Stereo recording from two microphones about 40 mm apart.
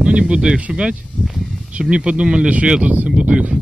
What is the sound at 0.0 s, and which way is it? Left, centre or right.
Speech, right.